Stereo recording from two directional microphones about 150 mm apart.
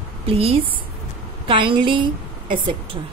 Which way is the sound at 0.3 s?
40° right (ahead or behind).